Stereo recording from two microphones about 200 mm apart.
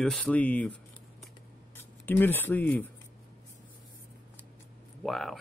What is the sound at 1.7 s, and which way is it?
Speech, 10° left (ahead or behind).